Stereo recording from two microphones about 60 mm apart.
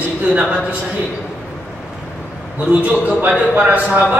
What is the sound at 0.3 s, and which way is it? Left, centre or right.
Speech, centre.